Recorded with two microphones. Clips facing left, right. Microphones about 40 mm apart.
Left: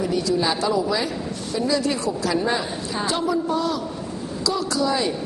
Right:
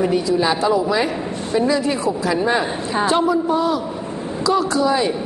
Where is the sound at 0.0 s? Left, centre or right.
Right.